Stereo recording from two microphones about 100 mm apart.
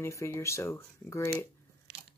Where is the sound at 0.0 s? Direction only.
30° left (ahead or behind).